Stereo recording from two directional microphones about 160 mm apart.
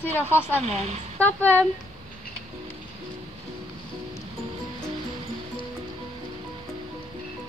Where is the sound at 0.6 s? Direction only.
40° right (ahead or behind).